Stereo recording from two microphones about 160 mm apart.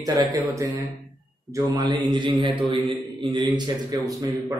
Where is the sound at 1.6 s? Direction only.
30° right (ahead or behind).